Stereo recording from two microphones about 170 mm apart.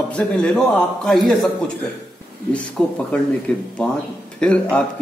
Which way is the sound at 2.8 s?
5° left (ahead or behind).